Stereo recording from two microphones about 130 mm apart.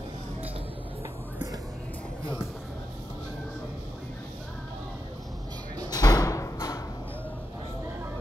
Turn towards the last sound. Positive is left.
turn(degrees=25)  # may be behind; listen again after turning